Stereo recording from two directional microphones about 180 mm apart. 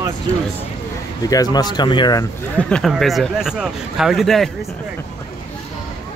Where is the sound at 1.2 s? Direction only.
20° left (ahead or behind).